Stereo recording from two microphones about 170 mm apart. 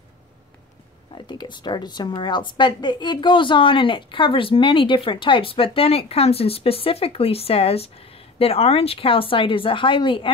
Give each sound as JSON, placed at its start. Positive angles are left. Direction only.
{"t": 1.1, "sound": "a woman's voice", "side_deg": 25}